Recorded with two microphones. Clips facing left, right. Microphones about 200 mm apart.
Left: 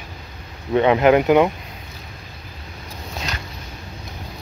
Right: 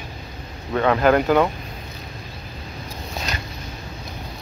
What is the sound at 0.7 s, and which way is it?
Speech, 20° left (ahead or behind).